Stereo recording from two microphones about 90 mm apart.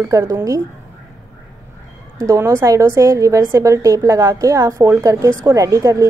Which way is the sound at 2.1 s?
35° right (ahead or behind).